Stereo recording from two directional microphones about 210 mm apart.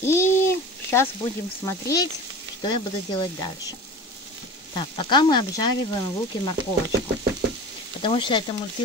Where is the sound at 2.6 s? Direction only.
20° left (ahead or behind).